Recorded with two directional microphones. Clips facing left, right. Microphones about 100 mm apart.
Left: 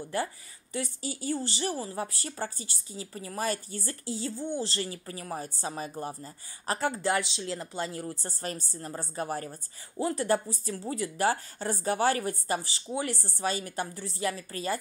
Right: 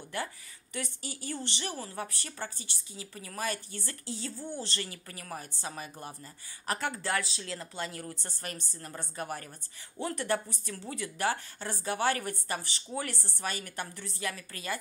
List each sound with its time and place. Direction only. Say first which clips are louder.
0.7 s a woman's voice: left 5 dB; 35° left (ahead or behind)